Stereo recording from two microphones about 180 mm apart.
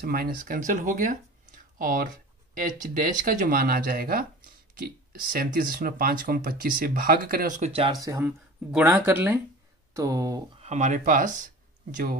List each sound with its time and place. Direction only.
0.0 s speech: 55° right (ahead or behind); by 7.9 s 35° right (ahead or behind)
7.9 s speech: 20° right (ahead or behind)
10.6 s speech: 40° right (ahead or behind)